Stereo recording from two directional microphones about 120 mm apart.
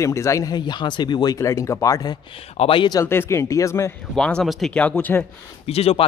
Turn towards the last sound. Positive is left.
turn(degrees=55)  # may be behind; listen again after turning